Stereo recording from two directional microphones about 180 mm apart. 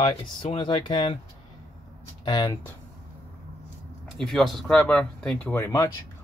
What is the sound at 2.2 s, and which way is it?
Speech, 25° left (ahead or behind).